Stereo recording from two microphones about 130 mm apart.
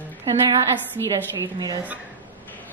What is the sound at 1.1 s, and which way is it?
Speech, 30° right (ahead or behind).